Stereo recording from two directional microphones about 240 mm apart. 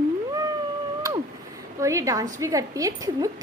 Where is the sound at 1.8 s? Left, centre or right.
Centre.